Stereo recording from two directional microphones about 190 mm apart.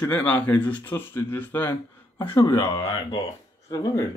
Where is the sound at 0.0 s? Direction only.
10° left (ahead or behind).